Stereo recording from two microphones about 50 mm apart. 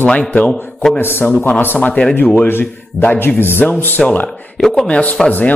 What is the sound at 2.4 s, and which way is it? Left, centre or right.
A man's voice, left.